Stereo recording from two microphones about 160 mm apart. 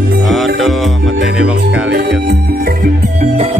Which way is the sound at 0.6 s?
Centre (ahead or behind).